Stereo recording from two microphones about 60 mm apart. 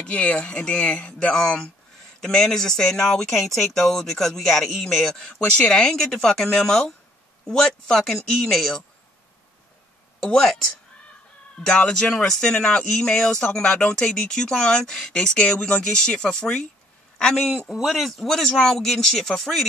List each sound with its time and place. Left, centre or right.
0.0 s speech: left
10.3 s speech: centre
12.2 s speech: centre